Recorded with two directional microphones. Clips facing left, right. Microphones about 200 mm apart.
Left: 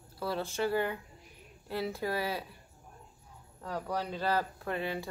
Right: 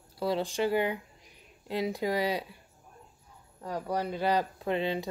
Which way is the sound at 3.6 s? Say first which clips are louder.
Right 3 dB; 15° right (ahead or behind).